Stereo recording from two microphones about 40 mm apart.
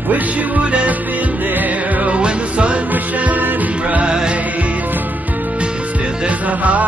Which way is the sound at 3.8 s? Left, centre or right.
Right.